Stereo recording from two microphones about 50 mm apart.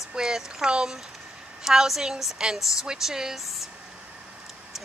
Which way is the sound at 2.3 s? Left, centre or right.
Centre.